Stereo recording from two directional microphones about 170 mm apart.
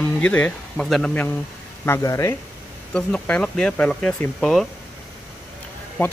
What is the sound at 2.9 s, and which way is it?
Speech, 5° left (ahead or behind).